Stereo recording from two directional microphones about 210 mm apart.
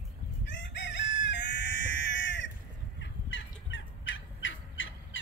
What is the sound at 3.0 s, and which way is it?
Fowl, 65° left (ahead or behind).